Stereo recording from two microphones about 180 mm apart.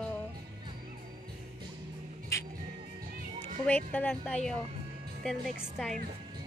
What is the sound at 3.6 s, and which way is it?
A woman's voice, 10° left (ahead or behind).